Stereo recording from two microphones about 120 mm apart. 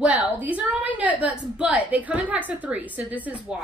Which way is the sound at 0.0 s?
10° right (ahead or behind).